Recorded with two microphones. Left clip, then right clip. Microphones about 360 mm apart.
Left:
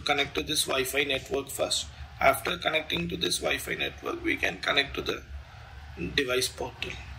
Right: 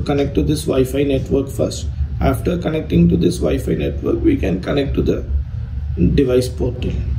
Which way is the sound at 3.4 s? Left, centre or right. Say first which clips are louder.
Right 10 dB; right.